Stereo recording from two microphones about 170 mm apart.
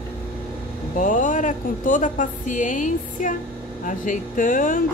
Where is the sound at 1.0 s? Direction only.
50° left (ahead or behind).